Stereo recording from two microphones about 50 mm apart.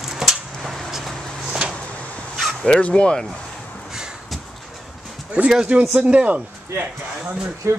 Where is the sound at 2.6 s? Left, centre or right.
Left.